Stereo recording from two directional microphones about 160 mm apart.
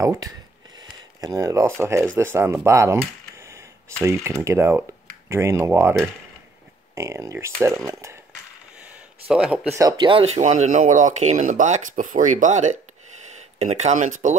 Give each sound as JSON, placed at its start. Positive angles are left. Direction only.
{"t": 0.0, "sound": "speech", "side_deg": -20}
{"t": 0.7, "sound": "a sound", "side_deg": -20}
{"t": 1.8, "sound": "speech", "side_deg": -15}
{"t": 9.3, "sound": "speech", "side_deg": -5}
{"t": 9.8, "sound": "speech", "side_deg": -25}